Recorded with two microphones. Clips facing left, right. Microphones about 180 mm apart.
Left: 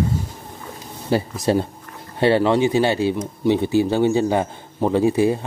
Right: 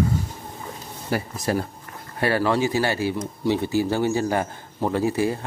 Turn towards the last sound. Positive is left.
turn(degrees=20)  # may be behind; listen again after turning